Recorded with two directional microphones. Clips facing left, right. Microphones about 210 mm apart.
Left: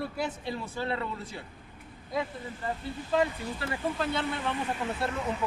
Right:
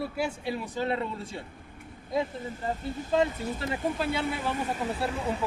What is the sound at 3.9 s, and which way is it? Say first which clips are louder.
Speech: right 1 dB; 10° right (ahead or behind).